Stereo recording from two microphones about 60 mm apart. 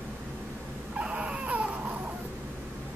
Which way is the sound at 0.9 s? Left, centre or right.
Centre.